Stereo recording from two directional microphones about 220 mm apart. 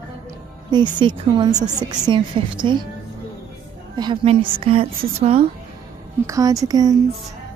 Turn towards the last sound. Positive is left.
turn(degrees=-15)  # may be behind; listen again after turning